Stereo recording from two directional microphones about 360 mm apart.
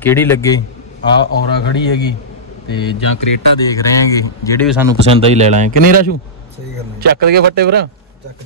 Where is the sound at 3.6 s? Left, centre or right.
Centre.